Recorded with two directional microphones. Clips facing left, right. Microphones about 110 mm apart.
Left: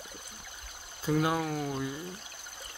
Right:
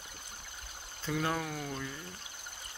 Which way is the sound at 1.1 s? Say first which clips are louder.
Left 5 dB; 10° left (ahead or behind).